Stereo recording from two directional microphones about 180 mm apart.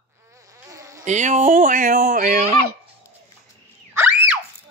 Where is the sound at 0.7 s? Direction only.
15° right (ahead or behind).